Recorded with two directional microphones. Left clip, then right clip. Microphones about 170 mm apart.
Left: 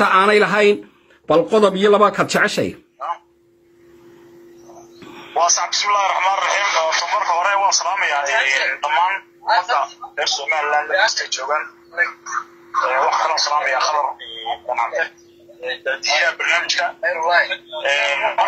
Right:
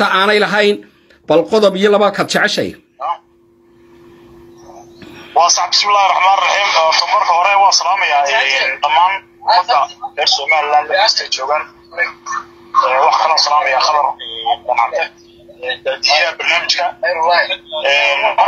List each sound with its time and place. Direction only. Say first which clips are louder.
0.0 s a man's voice: right 1 dB; 5° left (ahead or behind)
5.0 s a sound: right 1 dB; 5° left (ahead or behind)
5.3 s a man's voice: right 6 dB; 25° right (ahead or behind)